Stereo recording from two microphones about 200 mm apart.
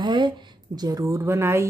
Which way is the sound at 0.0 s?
20° right (ahead or behind).